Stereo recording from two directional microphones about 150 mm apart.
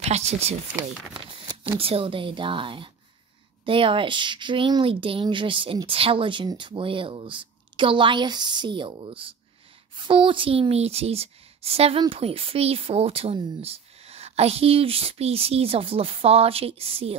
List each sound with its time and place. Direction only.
0.1 s speech: 45° right (ahead or behind)
1.4 s a woman's voice: 35° right (ahead or behind)